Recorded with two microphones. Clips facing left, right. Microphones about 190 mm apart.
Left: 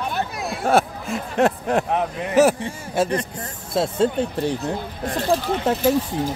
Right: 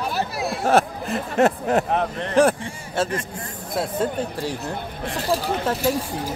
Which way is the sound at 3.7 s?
25° left (ahead or behind).